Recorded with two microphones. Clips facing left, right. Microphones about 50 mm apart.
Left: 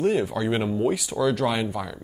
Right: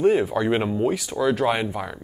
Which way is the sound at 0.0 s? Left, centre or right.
Centre.